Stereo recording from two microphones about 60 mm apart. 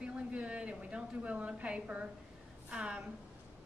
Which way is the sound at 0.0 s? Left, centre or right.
Centre.